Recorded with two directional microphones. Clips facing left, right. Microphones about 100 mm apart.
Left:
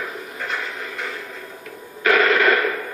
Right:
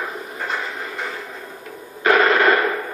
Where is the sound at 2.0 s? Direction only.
30° right (ahead or behind).